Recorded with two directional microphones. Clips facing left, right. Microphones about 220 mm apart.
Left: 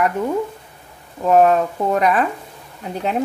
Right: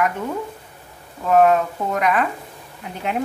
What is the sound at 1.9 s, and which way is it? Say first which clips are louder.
Speech: left 2 dB; 35° left (ahead or behind).